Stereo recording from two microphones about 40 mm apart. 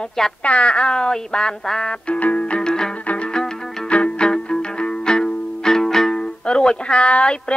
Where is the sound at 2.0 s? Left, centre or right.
Left.